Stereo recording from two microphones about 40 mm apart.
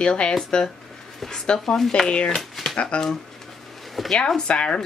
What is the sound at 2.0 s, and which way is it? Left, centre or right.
Speech, left.